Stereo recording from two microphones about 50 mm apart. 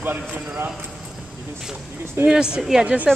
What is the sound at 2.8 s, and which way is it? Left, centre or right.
Speech, right.